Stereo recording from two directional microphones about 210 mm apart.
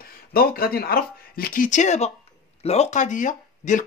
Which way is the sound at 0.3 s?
45° left (ahead or behind).